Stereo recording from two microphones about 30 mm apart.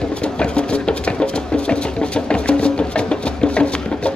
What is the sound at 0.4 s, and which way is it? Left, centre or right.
Music, left.